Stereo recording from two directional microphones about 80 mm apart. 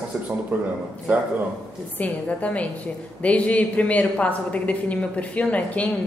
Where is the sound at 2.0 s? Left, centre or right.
Centre.